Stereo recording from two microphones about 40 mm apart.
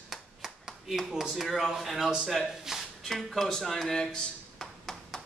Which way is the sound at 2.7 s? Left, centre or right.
Centre.